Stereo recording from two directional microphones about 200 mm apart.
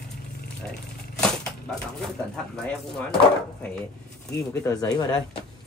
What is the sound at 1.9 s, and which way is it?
Speech, centre (ahead or behind).